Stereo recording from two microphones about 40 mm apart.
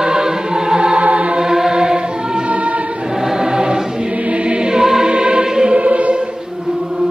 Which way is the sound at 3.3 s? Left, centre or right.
Centre.